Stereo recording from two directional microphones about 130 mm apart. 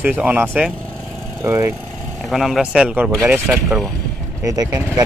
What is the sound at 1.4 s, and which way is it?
Speech, 25° right (ahead or behind).